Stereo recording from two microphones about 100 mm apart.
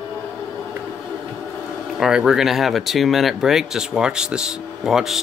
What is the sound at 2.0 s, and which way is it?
Speech, 5° right (ahead or behind).